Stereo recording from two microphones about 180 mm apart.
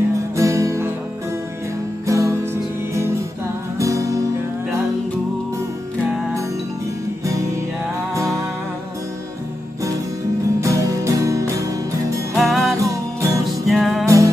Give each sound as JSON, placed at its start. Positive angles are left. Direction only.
{"t": 0.4, "sound": "music", "side_deg": -15}
{"t": 2.0, "sound": "music", "side_deg": -15}
{"t": 10.6, "sound": "music", "side_deg": -15}
{"t": 12.4, "sound": "music", "side_deg": 0}
{"t": 12.8, "sound": "music", "side_deg": -20}
{"t": 13.7, "sound": "music", "side_deg": 0}
{"t": 14.0, "sound": "music", "side_deg": -20}